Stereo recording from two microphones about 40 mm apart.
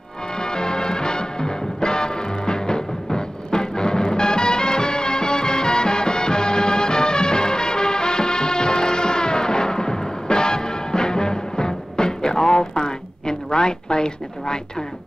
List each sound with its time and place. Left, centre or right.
0.4 s music: centre